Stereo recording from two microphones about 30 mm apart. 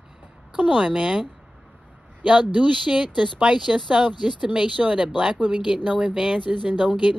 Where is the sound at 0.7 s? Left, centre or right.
Right.